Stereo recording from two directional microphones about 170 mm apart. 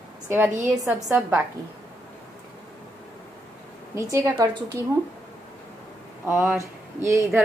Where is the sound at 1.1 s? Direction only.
5° right (ahead or behind).